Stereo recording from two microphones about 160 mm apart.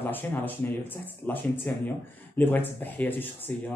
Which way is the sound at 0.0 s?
10° left (ahead or behind).